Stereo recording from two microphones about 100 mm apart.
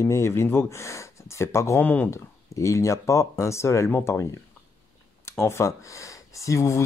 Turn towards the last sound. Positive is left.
turn(degrees=30)  # may be behind; listen again after turning